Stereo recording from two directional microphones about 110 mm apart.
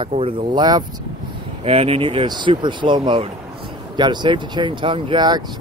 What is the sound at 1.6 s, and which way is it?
Speech, 60° right (ahead or behind).